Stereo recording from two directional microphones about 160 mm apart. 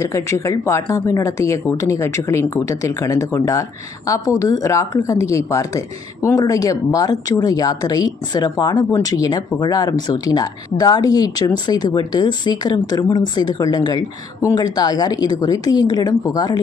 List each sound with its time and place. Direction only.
0.0 s speech: 20° left (ahead or behind)